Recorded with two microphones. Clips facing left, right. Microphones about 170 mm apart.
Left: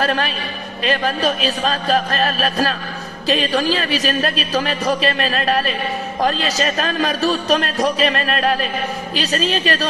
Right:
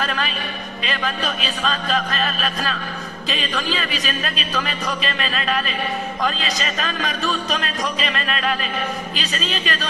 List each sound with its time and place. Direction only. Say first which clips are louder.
0.0 s a man's voice: left 5 dB; 35° left (ahead or behind)